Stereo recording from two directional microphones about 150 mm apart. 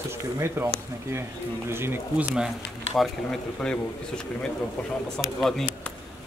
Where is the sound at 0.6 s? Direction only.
15° right (ahead or behind); by 5.6 s centre (ahead or behind).